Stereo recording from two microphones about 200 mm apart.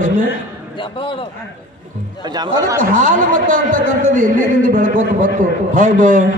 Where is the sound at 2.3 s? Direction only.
20° right (ahead or behind).